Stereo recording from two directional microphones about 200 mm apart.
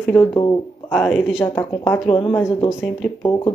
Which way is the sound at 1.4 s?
10° left (ahead or behind).